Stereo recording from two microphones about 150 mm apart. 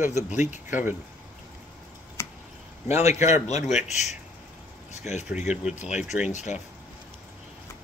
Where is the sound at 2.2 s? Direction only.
20° left (ahead or behind).